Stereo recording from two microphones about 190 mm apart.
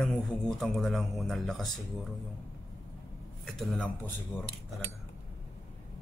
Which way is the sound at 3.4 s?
Centre (ahead or behind).